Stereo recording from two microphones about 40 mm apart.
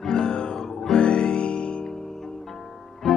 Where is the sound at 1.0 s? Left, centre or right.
Left.